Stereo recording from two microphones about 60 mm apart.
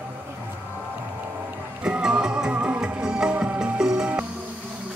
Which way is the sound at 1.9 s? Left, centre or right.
Centre.